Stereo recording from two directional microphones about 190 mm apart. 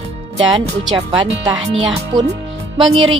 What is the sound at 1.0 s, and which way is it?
Speech, 25° right (ahead or behind).